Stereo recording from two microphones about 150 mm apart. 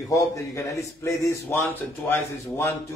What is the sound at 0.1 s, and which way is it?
A man's voice, 20° left (ahead or behind).